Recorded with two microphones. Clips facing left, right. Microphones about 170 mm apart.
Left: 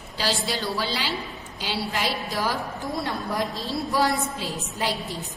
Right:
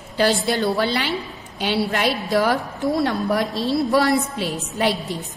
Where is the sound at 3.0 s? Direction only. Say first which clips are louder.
Right 4 dB; 75° right (ahead or behind).